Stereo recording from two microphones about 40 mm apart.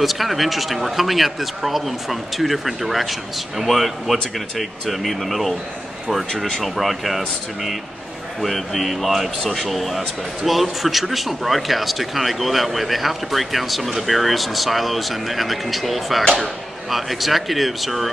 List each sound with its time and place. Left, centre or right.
0.0 s speech: centre
6.3 s speech: centre
6.6 s speech: centre